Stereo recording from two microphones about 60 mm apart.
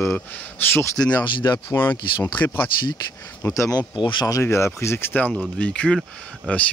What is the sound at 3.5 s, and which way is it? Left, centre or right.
Speech, left.